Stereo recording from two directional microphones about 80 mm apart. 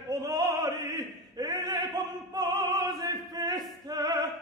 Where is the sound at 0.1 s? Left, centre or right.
Right.